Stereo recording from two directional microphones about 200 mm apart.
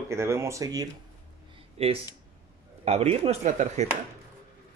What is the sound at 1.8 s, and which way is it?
Speech, 30° right (ahead or behind).